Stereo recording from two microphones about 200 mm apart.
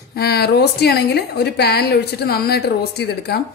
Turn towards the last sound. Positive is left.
turn(degrees=55)  # may be behind; listen again after turning